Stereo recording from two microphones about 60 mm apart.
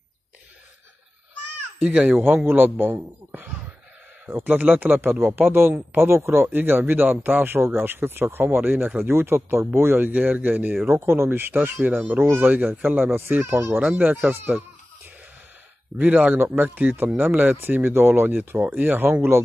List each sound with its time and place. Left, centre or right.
1.8 s speech: right
2.1 s speech: right
4.6 s speech: right
5.2 s speech: right
10.9 s speech: right
12.4 s speech: right
13.5 s speech: right
13.7 s speech: right
16.0 s speech: right